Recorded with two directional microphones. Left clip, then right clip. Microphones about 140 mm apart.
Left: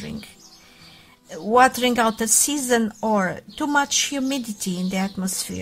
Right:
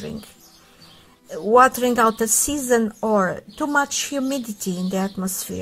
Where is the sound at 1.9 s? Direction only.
30° left (ahead or behind).